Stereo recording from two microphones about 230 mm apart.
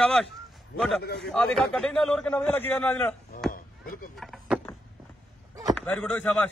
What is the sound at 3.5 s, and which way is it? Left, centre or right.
Chop, left.